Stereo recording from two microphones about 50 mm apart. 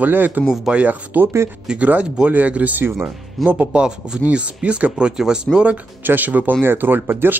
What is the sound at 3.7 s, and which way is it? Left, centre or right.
A man's voice, centre.